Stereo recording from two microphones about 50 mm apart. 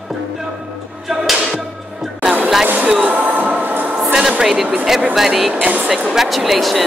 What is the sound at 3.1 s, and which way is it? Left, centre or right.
Train, right.